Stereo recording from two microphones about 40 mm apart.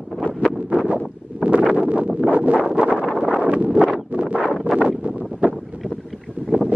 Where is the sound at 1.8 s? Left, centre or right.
Right.